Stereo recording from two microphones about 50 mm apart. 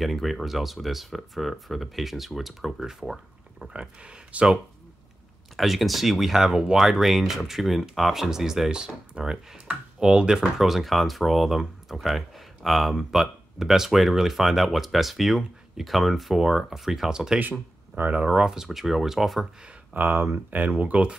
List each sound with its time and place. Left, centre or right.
0.0 s speech: centre
3.6 s speech: right
5.6 s speech: centre
10.6 s speech: centre
17.4 s speech: right
18.1 s speech: centre
19.9 s speech: right